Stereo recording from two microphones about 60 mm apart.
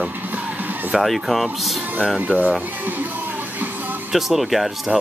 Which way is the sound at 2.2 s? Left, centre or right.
Right.